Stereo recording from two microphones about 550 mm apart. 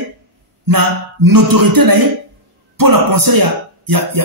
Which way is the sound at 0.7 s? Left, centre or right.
Right.